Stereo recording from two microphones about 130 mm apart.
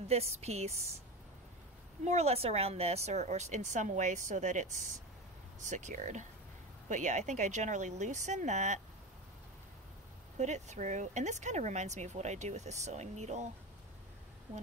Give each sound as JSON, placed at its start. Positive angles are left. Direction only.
{"t": 0.1, "sound": "speech", "side_deg": -55}
{"t": 2.0, "sound": "speech", "side_deg": -55}
{"t": 10.4, "sound": "speech", "side_deg": -65}